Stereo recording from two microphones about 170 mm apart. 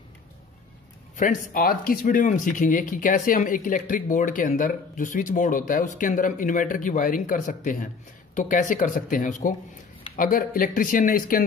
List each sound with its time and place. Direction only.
1.1 s speech: 55° left (ahead or behind)